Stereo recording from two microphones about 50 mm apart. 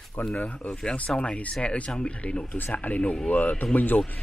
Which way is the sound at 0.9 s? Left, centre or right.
Left.